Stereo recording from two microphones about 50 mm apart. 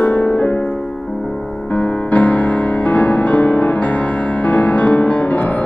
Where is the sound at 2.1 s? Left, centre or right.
Left.